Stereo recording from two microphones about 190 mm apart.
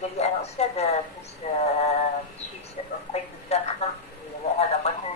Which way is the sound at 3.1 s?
35° left (ahead or behind).